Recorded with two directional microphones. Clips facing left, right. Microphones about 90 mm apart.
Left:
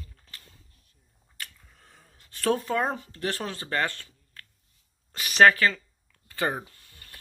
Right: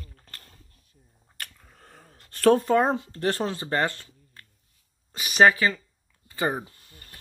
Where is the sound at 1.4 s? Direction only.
45° right (ahead or behind).